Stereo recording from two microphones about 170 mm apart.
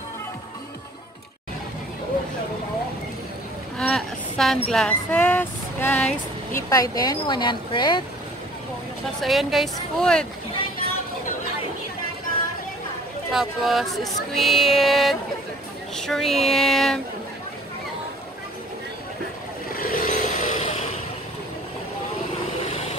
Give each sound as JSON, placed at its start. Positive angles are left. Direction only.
{"t": 3.7, "sound": "speech", "side_deg": 0}
{"t": 6.7, "sound": "speech", "side_deg": 20}
{"t": 9.2, "sound": "music", "side_deg": 0}
{"t": 13.3, "sound": "music", "side_deg": 0}
{"t": 19.7, "sound": "vehicle", "side_deg": 60}